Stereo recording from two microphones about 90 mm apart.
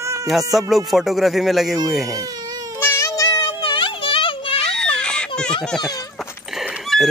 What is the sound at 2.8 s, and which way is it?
Child singing, 30° left (ahead or behind).